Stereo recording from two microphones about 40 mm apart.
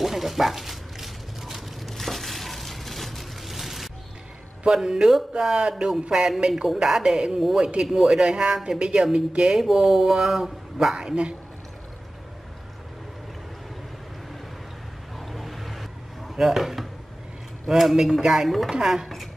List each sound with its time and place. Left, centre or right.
0.0 s a sound: centre
4.6 s a woman's voice: centre
9.6 s speech: centre
11.0 s a woman's voice: right
15.1 s a sound: centre
17.6 s speech: centre
18.7 s speech: centre